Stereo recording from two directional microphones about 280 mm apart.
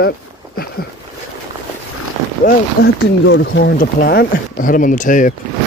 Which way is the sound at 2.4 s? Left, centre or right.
Left.